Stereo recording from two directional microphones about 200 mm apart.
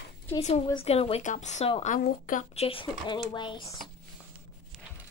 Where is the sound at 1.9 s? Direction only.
45° left (ahead or behind); by 3.7 s 25° left (ahead or behind).